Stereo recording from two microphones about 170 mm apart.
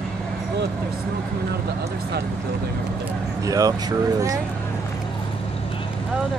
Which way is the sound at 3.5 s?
20° right (ahead or behind).